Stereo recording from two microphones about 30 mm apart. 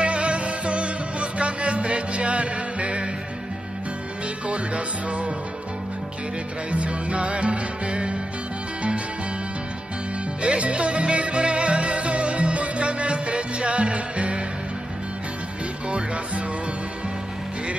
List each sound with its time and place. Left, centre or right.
0.0 s music: right
4.5 s music: right
6.7 s music: right
10.4 s music: right